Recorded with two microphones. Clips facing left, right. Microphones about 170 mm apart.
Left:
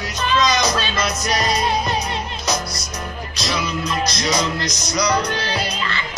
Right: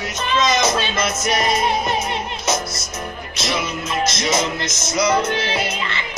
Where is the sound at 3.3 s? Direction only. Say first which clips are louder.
Even; 20° right (ahead or behind).